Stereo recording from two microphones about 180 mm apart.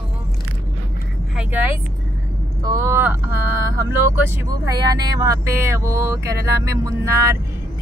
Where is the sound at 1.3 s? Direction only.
5° right (ahead or behind).